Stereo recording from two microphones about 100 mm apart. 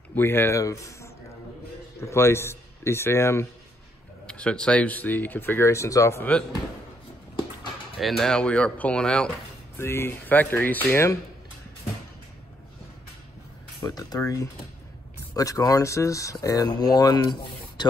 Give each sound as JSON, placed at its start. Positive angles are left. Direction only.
{"t": 0.1, "sound": "a man's voice", "side_deg": 20}
{"t": 4.3, "sound": "speech", "side_deg": 10}
{"t": 8.0, "sound": "speech", "side_deg": 5}
{"t": 9.8, "sound": "speech", "side_deg": 25}
{"t": 13.8, "sound": "speech", "side_deg": 40}